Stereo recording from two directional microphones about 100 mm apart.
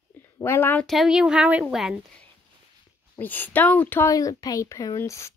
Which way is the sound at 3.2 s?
20° left (ahead or behind).